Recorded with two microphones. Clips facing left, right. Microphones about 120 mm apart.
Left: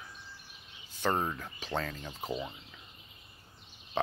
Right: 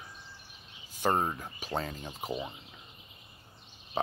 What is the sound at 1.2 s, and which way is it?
Speech, 25° right (ahead or behind).